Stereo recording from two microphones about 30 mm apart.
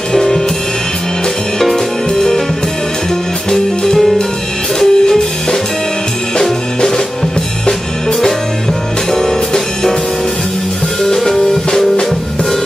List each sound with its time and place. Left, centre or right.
0.1 s music: centre
2.1 s music: centre
3.4 s music: centre
9.1 s music: centre
11.1 s music: centre
11.3 s music: centre